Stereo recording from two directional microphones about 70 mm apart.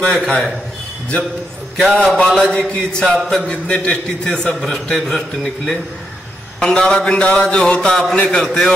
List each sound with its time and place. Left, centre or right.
0.0 s a man's voice: centre
2.0 s a man's voice: centre